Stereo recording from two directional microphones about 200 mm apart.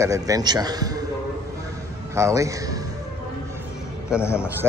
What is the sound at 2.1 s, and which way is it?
Speech, 15° right (ahead or behind).